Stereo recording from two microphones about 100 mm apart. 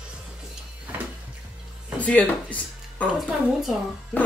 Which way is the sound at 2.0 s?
15° left (ahead or behind).